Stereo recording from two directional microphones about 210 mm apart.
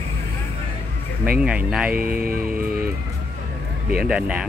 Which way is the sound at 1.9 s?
45° right (ahead or behind).